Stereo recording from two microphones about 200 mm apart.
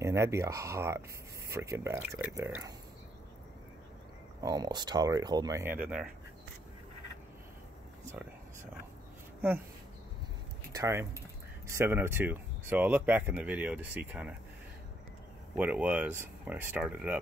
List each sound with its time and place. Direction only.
0.0 s speech: 15° right (ahead or behind)
4.4 s speech: 15° right (ahead or behind)
10.7 s speech: 15° right (ahead or behind)
15.5 s speech: 5° right (ahead or behind)